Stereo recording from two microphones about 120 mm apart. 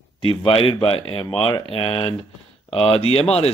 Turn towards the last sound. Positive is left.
turn(degrees=55)  # may be behind; listen again after turning